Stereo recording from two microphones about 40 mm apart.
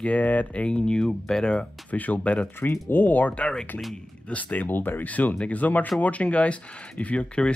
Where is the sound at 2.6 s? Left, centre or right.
Left.